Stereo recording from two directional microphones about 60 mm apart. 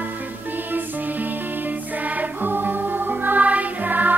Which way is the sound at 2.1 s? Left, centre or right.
Right.